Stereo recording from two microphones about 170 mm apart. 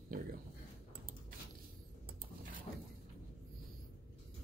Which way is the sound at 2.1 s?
55° right (ahead or behind).